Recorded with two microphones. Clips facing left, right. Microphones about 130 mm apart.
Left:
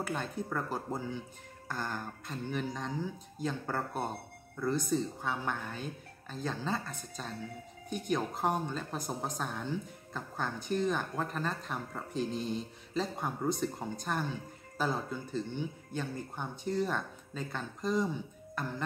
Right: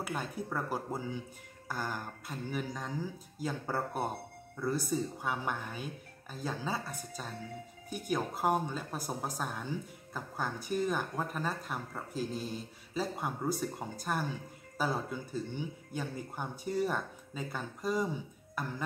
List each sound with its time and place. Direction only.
0.0 s speech: 10° right (ahead or behind)